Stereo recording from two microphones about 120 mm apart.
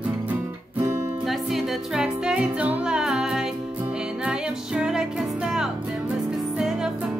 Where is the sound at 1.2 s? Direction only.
5° right (ahead or behind).